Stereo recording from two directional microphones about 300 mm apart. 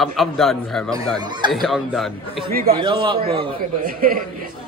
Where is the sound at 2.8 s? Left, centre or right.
Centre.